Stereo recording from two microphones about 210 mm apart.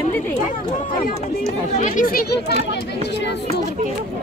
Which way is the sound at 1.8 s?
40° left (ahead or behind).